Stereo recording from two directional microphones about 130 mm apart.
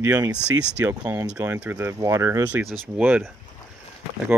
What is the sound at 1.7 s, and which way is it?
Speech, 25° right (ahead or behind).